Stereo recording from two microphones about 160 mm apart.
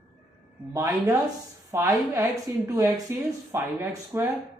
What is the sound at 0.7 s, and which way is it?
A woman's voice, 20° right (ahead or behind).